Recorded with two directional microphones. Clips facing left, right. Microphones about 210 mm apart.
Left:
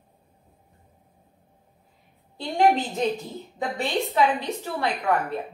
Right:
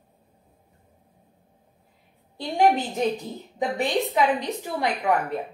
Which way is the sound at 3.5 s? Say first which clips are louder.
Right 2 dB; 15° right (ahead or behind).